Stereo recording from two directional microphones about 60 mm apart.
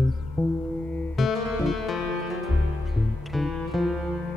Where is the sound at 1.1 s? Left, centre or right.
Centre.